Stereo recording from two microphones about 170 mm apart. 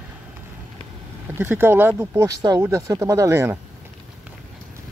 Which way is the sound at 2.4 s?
25° right (ahead or behind).